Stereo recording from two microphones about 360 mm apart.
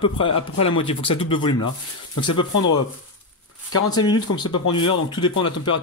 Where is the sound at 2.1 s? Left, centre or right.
Left.